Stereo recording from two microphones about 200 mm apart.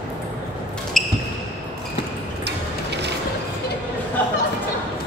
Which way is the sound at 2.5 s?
55° right (ahead or behind).